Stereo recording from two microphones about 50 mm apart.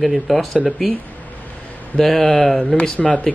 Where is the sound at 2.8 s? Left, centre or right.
Left.